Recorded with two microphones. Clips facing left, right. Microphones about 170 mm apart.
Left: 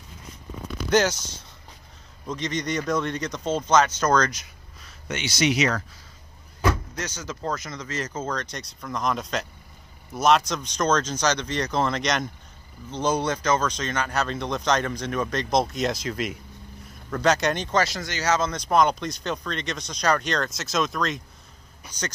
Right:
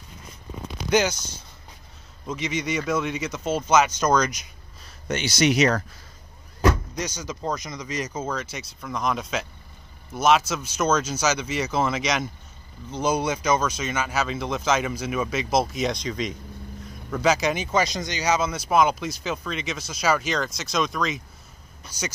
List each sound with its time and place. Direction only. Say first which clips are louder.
0.8 s speech: even; centre (ahead or behind)
5.0 s speech: right 2 dB; 40° right (ahead or behind)
7.0 s speech: right 2 dB; 15° right (ahead or behind)
17.8 s speech: right 1 dB; 15° right (ahead or behind)